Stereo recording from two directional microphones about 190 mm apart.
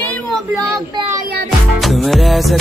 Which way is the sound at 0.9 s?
25° right (ahead or behind).